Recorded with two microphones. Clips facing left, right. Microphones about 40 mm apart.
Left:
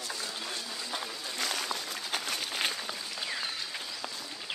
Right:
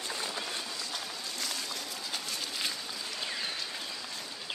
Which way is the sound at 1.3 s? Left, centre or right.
Left.